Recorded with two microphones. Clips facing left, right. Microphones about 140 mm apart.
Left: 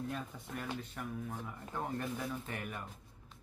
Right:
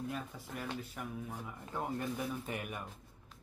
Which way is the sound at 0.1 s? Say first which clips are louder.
Even; 5° right (ahead or behind).